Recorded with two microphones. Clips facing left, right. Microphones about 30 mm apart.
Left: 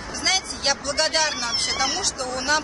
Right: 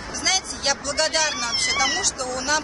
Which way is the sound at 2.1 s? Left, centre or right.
Left.